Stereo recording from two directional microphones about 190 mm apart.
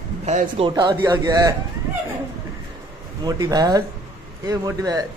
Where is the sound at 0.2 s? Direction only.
35° right (ahead or behind).